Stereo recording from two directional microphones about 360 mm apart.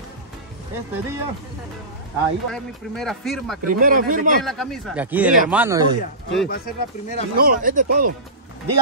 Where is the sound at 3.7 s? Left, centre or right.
Right.